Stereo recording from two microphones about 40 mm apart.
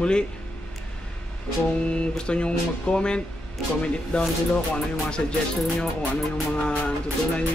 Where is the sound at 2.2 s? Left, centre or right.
Left.